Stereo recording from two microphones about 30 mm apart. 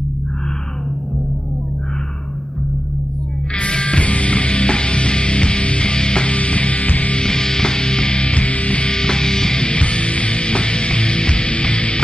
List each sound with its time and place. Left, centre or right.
3.5 s music: left
6.3 s music: left
7.2 s music: left
8.8 s music: left
9.7 s music: left